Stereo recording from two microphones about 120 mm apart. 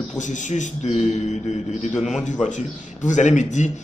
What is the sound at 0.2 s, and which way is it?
A man's voice, 90° left.